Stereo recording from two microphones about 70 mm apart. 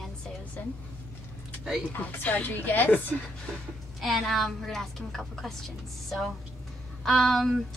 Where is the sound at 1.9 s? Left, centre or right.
Left.